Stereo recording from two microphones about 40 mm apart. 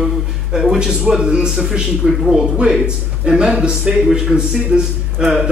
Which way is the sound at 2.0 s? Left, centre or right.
Centre.